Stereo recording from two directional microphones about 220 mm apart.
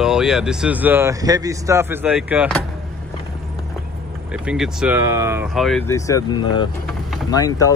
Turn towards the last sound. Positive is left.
turn(degrees=15)  # may be behind; listen again after turning